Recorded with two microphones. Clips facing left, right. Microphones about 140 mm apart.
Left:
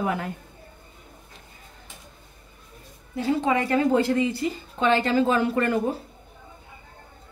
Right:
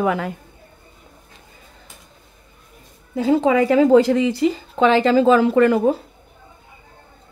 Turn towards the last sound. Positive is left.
turn(degrees=-90)